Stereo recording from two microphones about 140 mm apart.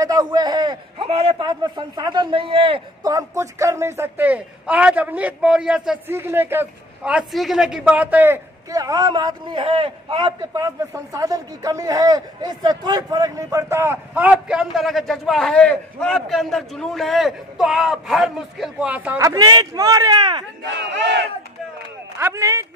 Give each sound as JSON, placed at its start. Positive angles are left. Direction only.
{"t": 0.0, "sound": "a man's voice", "side_deg": -25}
{"t": 6.0, "sound": "a man's voice", "side_deg": -15}
{"t": 10.6, "sound": "a man's voice", "side_deg": -25}
{"t": 19.2, "sound": "a man's voice", "side_deg": -25}
{"t": 22.2, "sound": "a man's voice", "side_deg": -20}